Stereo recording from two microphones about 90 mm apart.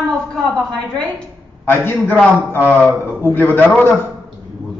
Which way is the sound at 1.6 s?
25° left (ahead or behind).